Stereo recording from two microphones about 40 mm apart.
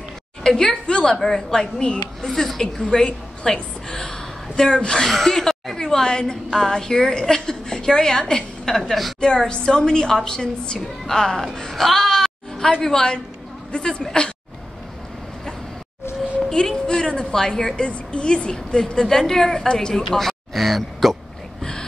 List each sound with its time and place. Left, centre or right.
0.4 s a woman's voice: centre
1.1 s a woman's voice: centre
2.2 s speech: centre
2.6 s a woman's voice: centre
5.0 s a woman's voice: centre
9.2 s a woman's voice: left
11.5 s a sound: centre
12.8 s a woman's voice: centre
16.3 s a sound: centre
16.7 s a woman's voice: left
17.8 s a woman's voice: left
20.1 s a sound: centre